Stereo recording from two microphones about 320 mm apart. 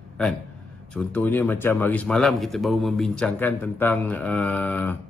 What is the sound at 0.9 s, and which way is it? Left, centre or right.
Speech, centre.